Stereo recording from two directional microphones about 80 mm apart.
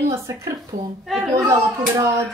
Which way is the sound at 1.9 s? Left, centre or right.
Right.